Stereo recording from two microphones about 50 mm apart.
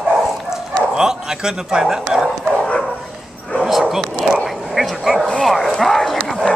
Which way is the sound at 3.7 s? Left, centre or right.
Centre.